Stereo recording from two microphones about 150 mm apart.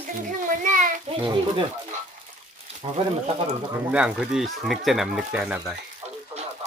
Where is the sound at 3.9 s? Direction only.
5° right (ahead or behind).